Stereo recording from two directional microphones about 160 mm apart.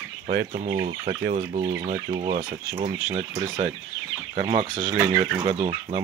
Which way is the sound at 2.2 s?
45° right (ahead or behind).